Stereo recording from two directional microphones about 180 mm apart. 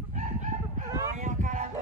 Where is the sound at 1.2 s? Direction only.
40° right (ahead or behind).